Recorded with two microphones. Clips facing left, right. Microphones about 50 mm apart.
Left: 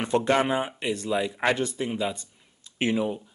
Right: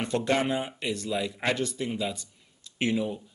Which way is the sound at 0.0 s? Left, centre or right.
Left.